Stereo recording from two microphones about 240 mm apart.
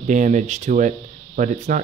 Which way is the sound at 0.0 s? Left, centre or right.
Right.